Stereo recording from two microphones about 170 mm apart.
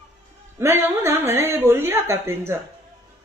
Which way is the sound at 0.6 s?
15° right (ahead or behind).